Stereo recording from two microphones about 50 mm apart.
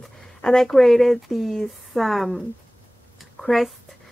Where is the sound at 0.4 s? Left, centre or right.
Centre.